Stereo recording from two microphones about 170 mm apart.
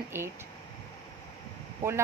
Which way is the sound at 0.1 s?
15° right (ahead or behind).